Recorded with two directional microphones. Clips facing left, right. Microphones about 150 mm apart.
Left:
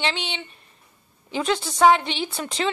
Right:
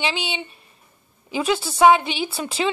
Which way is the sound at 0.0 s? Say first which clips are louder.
Right 2 dB; 5° right (ahead or behind).